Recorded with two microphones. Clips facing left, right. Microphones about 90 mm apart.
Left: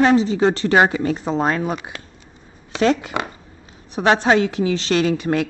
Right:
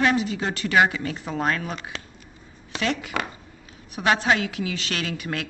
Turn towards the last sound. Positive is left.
turn(degrees=30)  # may be behind; listen again after turning